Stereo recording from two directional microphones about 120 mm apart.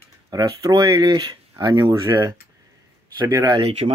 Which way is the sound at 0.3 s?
30° right (ahead or behind).